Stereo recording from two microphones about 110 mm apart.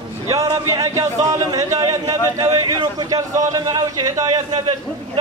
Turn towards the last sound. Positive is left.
turn(degrees=-40)  # may be behind; listen again after turning